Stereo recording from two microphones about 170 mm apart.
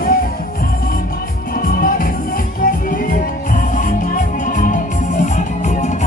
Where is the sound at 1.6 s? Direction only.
55° left (ahead or behind).